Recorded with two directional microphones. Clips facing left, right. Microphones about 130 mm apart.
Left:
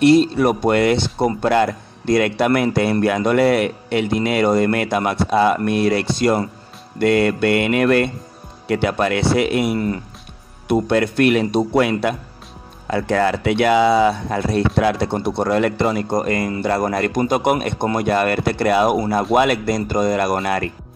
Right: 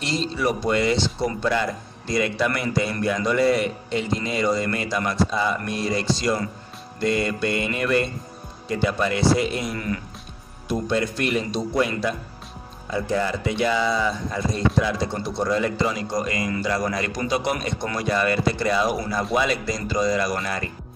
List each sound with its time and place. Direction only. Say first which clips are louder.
0.0 s speech: left 12 dB; 55° left (ahead or behind)
9.8 s speech: left 6 dB; 30° left (ahead or behind)
10.7 s speech: left 7 dB; 65° left (ahead or behind)